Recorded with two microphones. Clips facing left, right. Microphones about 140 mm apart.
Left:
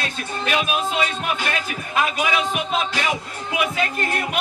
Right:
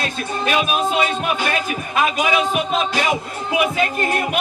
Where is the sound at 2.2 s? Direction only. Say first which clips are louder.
Right 4 dB; 20° right (ahead or behind).